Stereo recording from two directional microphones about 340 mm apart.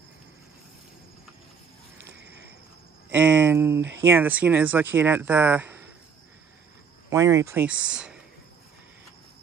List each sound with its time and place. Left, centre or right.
2.0 s a sound: right
3.1 s speech: centre
7.1 s speech: centre